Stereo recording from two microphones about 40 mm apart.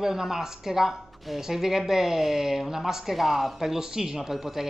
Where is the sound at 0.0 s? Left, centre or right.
Centre.